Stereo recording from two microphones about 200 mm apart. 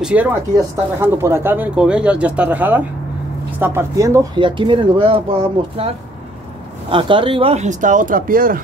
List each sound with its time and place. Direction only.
0.0 s speech: 5° right (ahead or behind); by 5.9 s 30° right (ahead or behind)
6.9 s speech: 25° right (ahead or behind); by 8.5 s 45° right (ahead or behind)